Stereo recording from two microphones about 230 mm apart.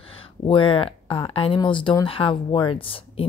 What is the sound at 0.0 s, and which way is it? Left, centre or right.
Speech, left.